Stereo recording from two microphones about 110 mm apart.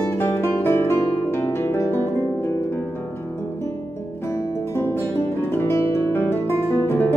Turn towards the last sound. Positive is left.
turn(degrees=25)  # may be behind; listen again after turning